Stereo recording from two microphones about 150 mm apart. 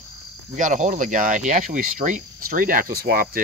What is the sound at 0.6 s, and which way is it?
Speech, 55° right (ahead or behind).